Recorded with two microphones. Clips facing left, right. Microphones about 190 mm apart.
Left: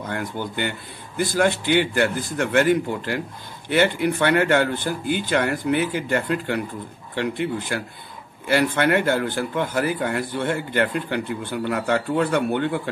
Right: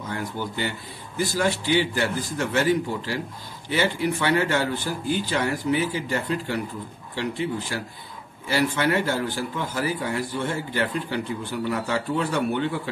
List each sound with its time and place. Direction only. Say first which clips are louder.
0.1 s speech: left 1 dB; 60° left (ahead or behind)